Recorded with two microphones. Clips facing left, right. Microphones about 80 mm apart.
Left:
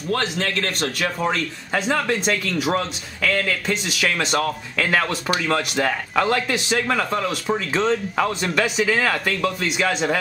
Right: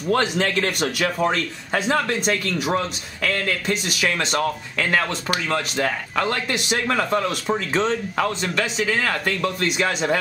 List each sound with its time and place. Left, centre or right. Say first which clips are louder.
0.1 s a man's voice: right 3 dB; centre
1.0 s speech: right 1 dB; centre